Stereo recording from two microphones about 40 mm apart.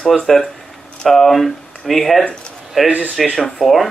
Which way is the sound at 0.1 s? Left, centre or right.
Centre.